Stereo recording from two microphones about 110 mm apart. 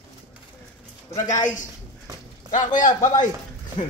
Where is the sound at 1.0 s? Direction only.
30° left (ahead or behind).